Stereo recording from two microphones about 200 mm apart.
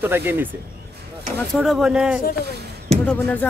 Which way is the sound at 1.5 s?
Centre (ahead or behind).